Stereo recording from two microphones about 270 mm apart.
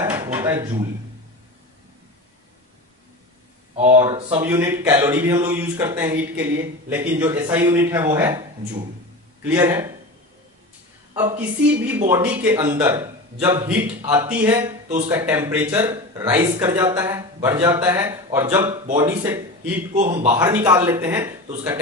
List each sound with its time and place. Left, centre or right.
0.0 s a sound: centre
3.7 s speech: right; by 9.8 s centre
11.8 s a man's voice: centre